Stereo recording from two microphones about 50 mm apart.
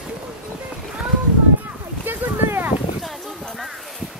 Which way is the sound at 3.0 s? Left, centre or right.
Centre.